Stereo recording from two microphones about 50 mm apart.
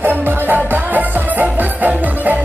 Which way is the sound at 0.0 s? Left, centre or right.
Right.